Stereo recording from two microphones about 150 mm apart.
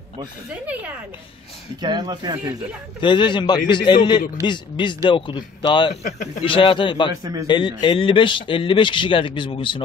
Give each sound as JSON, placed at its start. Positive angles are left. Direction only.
{"t": 0.7, "sound": "speech", "side_deg": -10}
{"t": 1.8, "sound": "speech", "side_deg": -30}
{"t": 3.0, "sound": "speech", "side_deg": 30}